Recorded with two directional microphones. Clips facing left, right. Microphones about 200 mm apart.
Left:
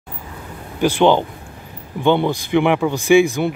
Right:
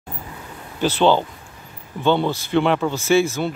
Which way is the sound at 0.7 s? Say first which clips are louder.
Left 3 dB; 15° left (ahead or behind).